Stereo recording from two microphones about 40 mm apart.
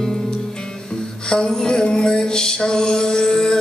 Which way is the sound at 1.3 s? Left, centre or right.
Centre.